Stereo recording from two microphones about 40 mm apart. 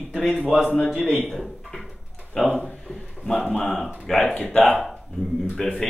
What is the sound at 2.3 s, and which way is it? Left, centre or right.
Speech, centre.